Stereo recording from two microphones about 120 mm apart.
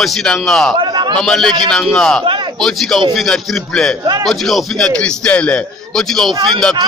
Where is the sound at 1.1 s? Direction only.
5° left (ahead or behind).